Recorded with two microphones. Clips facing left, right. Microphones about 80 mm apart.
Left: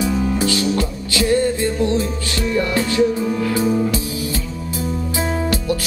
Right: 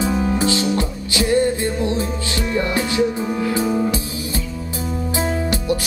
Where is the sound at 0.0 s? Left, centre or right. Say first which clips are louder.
Even; right.